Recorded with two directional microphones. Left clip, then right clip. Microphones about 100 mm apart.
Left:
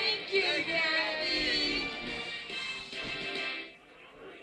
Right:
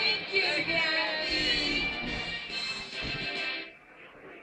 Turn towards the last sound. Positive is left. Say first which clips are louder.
# right 2 dB
turn(degrees=35)  # may be behind; listen again after turning